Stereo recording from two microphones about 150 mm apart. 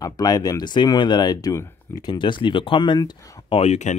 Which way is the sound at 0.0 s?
25° left (ahead or behind).